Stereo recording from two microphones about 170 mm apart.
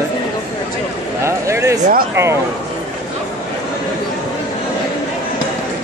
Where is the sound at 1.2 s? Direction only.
15° right (ahead or behind).